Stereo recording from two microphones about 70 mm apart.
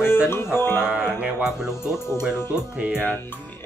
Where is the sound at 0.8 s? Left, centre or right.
Centre.